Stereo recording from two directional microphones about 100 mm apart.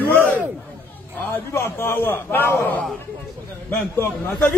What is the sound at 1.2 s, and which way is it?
A man's voice, 20° left (ahead or behind).